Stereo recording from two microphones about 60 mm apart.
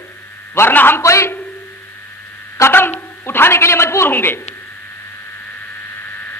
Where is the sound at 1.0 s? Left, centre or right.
Left.